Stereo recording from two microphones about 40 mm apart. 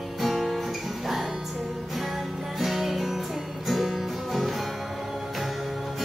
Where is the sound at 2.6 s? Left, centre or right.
Centre.